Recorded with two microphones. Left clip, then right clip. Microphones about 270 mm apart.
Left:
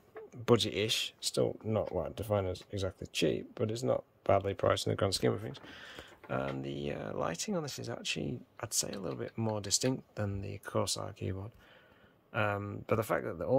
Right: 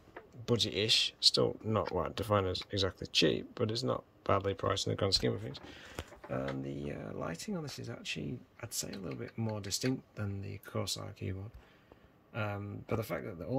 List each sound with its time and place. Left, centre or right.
0.5 s speech: centre
6.6 s speech: left
6.9 s speech: centre